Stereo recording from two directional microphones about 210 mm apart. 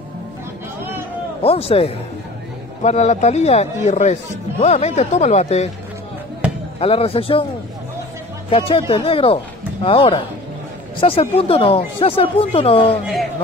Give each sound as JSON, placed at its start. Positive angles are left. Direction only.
{"t": 1.4, "sound": "speech", "side_deg": 30}
{"t": 6.8, "sound": "speech", "side_deg": 25}
{"t": 8.5, "sound": "speech", "side_deg": 25}